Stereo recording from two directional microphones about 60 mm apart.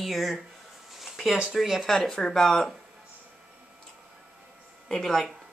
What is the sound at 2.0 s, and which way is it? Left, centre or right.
Speech, centre.